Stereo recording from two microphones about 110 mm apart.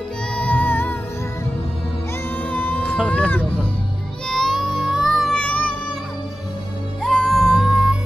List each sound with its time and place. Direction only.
0.4 s music: 15° left (ahead or behind)
2.3 s baby cry: 15° left (ahead or behind)
4.3 s music: 5° left (ahead or behind)
5.4 s music: 10° left (ahead or behind)
7.0 s music: centre (ahead or behind)